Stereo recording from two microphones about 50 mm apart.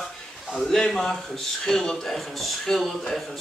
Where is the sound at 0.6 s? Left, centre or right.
Centre.